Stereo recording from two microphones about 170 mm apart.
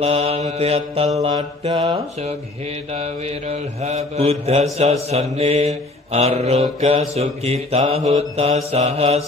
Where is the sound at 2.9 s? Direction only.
40° right (ahead or behind).